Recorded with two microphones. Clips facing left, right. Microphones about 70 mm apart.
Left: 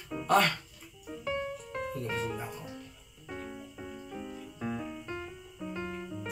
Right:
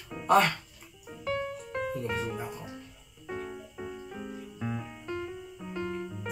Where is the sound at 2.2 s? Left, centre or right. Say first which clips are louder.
Right 1 dB; centre.